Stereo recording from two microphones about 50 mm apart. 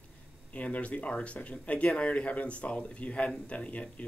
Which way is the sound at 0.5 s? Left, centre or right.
Left.